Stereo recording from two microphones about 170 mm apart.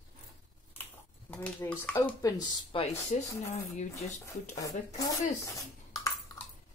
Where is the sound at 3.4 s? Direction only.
40° left (ahead or behind).